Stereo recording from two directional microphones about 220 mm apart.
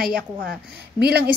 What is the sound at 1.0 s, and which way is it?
Speech, 45° right (ahead or behind).